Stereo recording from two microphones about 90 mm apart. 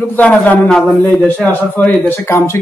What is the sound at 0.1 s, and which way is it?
A man's voice, 20° left (ahead or behind).